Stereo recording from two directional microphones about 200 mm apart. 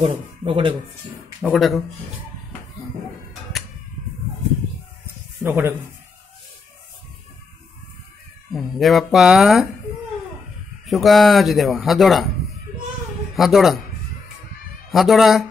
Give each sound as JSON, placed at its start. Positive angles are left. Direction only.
{"t": 0.0, "sound": "speech", "side_deg": -25}
{"t": 1.4, "sound": "speech", "side_deg": 0}
{"t": 5.4, "sound": "speech", "side_deg": -10}
{"t": 8.5, "sound": "speech", "side_deg": 0}
{"t": 10.9, "sound": "speech", "side_deg": 0}
{"t": 13.4, "sound": "speech", "side_deg": 0}
{"t": 14.9, "sound": "speech", "side_deg": 0}